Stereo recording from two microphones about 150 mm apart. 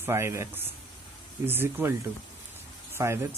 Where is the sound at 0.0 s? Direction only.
15° right (ahead or behind).